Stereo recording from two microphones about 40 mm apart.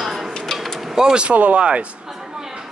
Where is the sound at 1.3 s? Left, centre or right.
Right.